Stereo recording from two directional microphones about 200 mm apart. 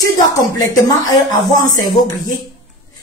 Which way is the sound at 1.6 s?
40° left (ahead or behind).